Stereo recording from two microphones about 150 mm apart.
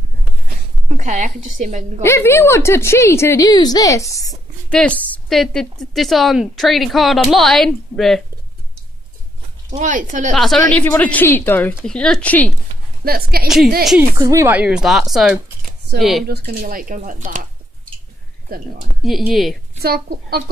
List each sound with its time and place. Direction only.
0.8 s a woman's voice: 55° right (ahead or behind)
2.0 s a woman's voice: 15° left (ahead or behind)
4.6 s a woman's voice: 10° left (ahead or behind)
9.8 s a woman's voice: 60° right (ahead or behind)
10.3 s a woman's voice: centre (ahead or behind)
13.0 s a woman's voice: 85° right
14.1 s a woman's voice: 20° right (ahead or behind); by 16.3 s centre (ahead or behind)
16.3 s speech: 85° right; by 17.5 s 65° right (ahead or behind)
19.0 s a woman's voice: centre (ahead or behind)
19.8 s a woman's voice: 90° right